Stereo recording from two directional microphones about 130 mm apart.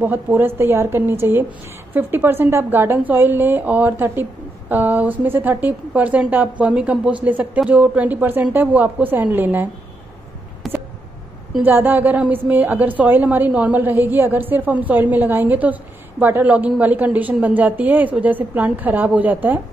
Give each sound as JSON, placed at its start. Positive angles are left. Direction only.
{"t": 0.0, "sound": "a woman's voice", "side_deg": -15}
{"t": 10.6, "sound": "a sound", "side_deg": 0}
{"t": 11.6, "sound": "a woman's voice", "side_deg": -15}